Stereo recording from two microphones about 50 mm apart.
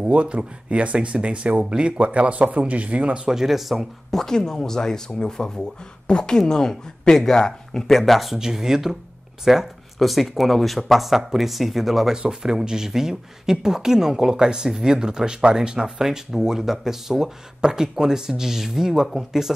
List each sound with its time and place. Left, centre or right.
0.0 s speech: right
3.3 s speech: centre
8.4 s speech: centre